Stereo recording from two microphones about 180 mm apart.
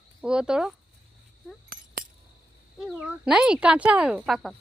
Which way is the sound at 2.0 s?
50° right (ahead or behind).